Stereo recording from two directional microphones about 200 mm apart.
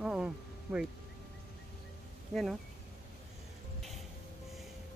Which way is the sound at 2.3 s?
Centre (ahead or behind).